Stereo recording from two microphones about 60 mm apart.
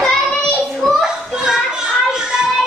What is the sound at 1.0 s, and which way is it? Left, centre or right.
Children playing, centre.